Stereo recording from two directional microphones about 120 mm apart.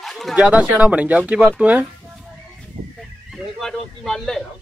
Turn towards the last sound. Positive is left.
turn(degrees=5)  # may be behind; listen again after turning